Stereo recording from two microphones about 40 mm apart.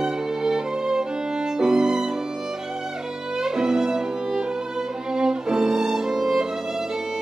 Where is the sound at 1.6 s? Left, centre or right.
Centre.